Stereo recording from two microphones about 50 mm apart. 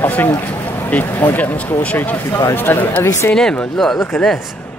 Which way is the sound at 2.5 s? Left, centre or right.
Left.